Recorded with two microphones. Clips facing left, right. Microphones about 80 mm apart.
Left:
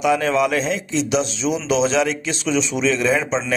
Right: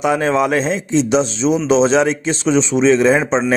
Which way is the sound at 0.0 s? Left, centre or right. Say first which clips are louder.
Right 2 dB; right.